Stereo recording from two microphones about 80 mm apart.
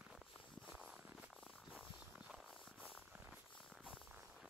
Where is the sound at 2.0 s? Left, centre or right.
Centre.